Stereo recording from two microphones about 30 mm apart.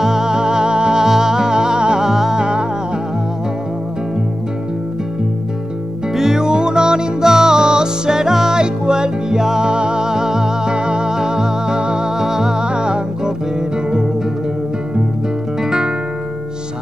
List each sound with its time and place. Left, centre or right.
0.0 s music: centre
1.0 s music: centre
2.0 s music: centre
2.3 s music: right
6.1 s music: centre